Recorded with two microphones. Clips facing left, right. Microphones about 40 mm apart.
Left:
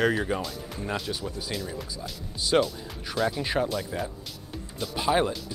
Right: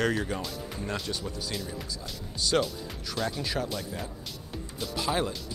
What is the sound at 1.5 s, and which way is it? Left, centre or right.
Speech, centre.